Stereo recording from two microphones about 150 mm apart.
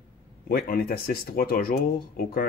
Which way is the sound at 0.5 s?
75° left (ahead or behind).